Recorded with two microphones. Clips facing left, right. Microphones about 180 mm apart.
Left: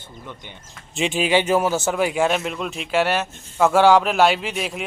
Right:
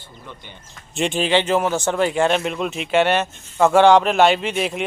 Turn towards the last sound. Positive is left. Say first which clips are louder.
# right 4 dB
turn(degrees=0)  # may be behind; listen again after turning